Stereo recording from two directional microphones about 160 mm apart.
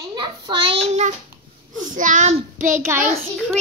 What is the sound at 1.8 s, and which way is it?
Speech, 55° right (ahead or behind).